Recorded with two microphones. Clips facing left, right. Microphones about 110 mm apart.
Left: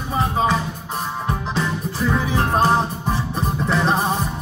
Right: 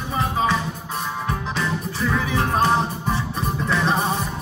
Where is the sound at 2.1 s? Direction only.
30° left (ahead or behind).